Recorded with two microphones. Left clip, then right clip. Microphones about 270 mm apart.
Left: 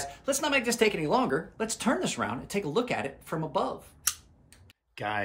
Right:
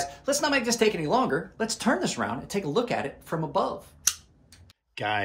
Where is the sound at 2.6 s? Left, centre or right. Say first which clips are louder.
Right 2 dB; centre.